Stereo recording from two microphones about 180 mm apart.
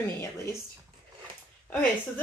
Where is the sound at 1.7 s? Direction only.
10° left (ahead or behind).